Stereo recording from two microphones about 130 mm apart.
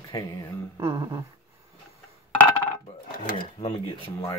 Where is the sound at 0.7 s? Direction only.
25° right (ahead or behind).